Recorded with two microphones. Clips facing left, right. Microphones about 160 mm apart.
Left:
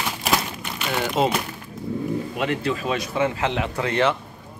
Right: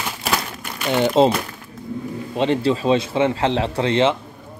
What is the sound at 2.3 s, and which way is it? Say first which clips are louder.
A man's voice: right 11 dB; 30° right (ahead or behind).